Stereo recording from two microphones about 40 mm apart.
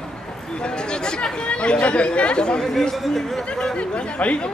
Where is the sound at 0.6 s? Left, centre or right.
Left.